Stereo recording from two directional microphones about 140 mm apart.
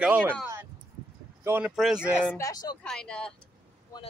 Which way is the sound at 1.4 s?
15° right (ahead or behind).